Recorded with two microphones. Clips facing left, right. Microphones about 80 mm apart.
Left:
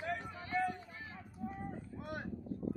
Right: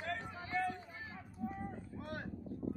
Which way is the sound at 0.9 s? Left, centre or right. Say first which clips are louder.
Even; centre.